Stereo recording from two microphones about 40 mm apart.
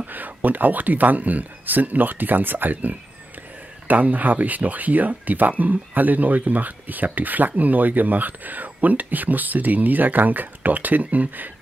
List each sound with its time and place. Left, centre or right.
0.0 s speech: right